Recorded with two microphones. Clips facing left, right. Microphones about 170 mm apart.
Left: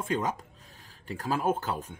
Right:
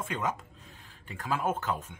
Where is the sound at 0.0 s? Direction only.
35° left (ahead or behind).